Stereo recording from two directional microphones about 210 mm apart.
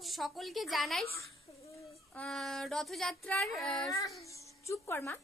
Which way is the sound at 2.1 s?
Centre (ahead or behind).